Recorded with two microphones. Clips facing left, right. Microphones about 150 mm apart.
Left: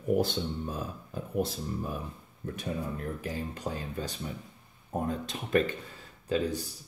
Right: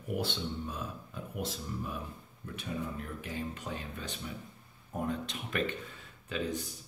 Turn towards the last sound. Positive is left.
turn(degrees=35)  # may be behind; listen again after turning